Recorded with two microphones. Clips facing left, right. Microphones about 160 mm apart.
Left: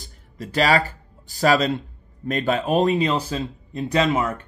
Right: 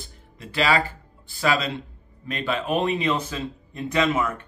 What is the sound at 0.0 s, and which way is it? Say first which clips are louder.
Speech: left 5 dB; 40° left (ahead or behind).